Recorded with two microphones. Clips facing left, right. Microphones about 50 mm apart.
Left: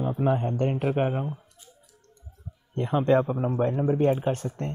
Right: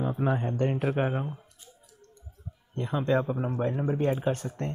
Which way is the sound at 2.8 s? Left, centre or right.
Left.